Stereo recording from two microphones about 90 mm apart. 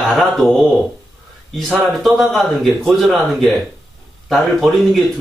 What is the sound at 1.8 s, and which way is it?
Speech, centre (ahead or behind).